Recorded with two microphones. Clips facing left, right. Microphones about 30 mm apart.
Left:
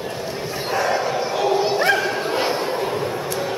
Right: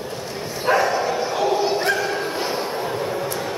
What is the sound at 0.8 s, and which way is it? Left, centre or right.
Bow-wow, centre.